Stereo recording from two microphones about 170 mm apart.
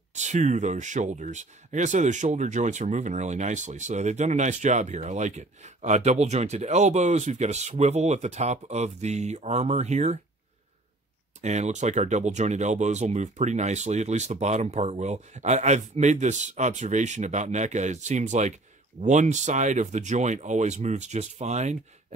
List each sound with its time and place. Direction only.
0.1 s speech: 45° right (ahead or behind)
11.4 s speech: 45° right (ahead or behind)